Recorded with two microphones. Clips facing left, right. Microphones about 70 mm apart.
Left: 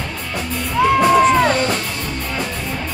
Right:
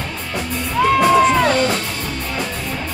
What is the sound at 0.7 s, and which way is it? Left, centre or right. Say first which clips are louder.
Music: even; centre.